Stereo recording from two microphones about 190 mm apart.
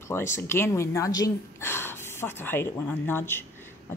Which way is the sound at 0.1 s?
15° left (ahead or behind).